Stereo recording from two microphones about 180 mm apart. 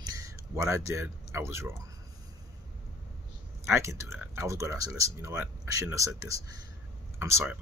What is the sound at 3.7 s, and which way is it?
Speech, 15° right (ahead or behind).